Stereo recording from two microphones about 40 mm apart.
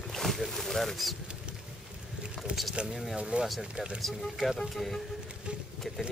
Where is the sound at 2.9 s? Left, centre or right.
Centre.